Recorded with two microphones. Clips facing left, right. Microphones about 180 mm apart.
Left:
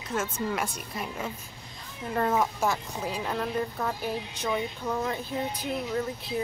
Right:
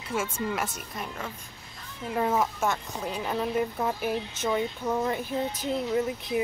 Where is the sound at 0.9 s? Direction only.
5° left (ahead or behind).